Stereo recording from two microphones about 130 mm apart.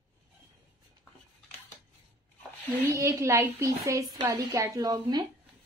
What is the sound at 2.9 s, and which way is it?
A woman's voice, 20° right (ahead or behind).